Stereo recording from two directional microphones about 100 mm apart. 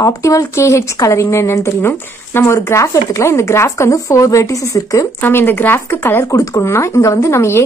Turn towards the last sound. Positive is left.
turn(degrees=25)  # may be behind; listen again after turning